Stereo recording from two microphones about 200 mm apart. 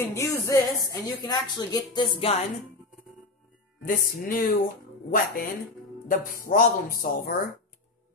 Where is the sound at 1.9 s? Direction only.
25° left (ahead or behind).